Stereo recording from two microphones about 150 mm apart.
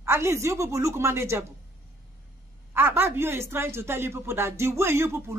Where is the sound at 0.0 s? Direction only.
15° right (ahead or behind).